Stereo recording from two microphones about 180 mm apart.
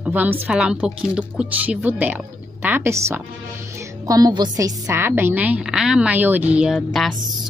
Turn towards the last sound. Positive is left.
turn(degrees=0)  # may be behind; listen again after turning